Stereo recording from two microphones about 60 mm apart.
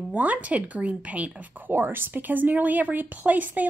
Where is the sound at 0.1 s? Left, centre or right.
Right.